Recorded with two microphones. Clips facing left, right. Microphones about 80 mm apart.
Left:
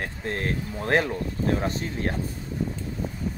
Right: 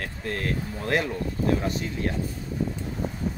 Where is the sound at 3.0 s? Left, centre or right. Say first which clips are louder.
Right 3 dB; right.